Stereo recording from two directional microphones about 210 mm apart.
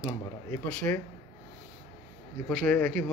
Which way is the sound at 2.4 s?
5° left (ahead or behind).